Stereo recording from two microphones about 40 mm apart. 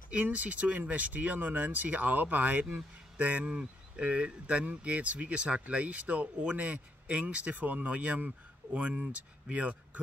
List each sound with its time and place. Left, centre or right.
0.2 s speech: right
3.4 s speech: right